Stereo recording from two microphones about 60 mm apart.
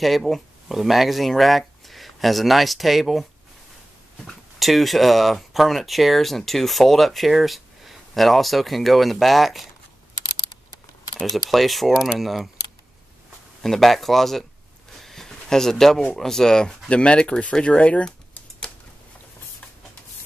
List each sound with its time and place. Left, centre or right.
0.0 s speech: centre
4.6 s speech: centre
11.1 s speech: centre
13.6 s speech: centre
15.0 s a sound: centre
16.2 s speech: centre